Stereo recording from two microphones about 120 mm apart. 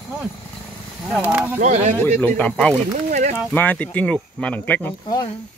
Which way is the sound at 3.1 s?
90° right.